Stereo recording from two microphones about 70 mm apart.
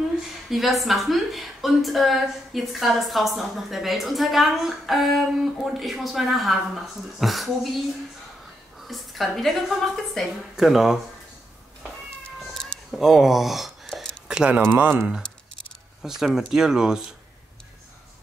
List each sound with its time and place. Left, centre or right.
0.5 s a woman's voice: centre
8.8 s a woman's voice: centre
12.9 s speech: centre
14.2 s a sound: centre
14.7 s speech: right
16.2 s speech: centre